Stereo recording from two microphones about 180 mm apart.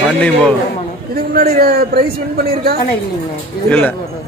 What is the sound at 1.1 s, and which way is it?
A man's voice, 55° right (ahead or behind).